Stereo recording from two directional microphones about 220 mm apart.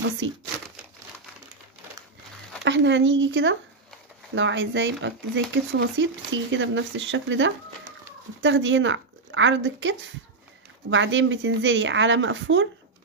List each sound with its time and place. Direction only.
0.2 s speech: 60° right (ahead or behind)
2.6 s speech: 55° right (ahead or behind)